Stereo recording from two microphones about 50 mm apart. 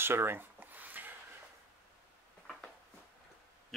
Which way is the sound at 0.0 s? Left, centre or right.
Right.